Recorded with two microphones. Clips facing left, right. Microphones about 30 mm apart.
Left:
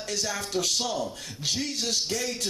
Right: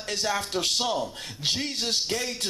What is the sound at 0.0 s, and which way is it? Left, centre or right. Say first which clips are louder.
A man's voice: right 3 dB; right.